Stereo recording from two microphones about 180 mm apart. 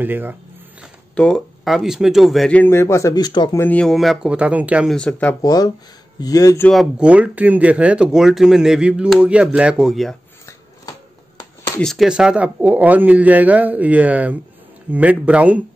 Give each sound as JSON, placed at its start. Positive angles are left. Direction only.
{"t": 0.0, "sound": "speech", "side_deg": -10}
{"t": 1.1, "sound": "speech", "side_deg": 5}
{"t": 3.6, "sound": "speech", "side_deg": 5}
{"t": 4.9, "sound": "speech", "side_deg": 5}
{"t": 5.4, "sound": "speech", "side_deg": 20}
{"t": 6.7, "sound": "speech", "side_deg": -5}
{"t": 11.8, "sound": "speech", "side_deg": 0}